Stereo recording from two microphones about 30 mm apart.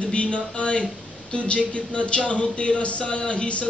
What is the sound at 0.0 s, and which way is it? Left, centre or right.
Speech, left.